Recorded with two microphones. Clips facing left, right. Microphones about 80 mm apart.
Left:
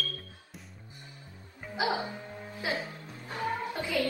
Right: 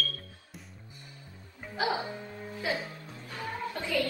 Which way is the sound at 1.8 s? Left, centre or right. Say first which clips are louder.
Even; left.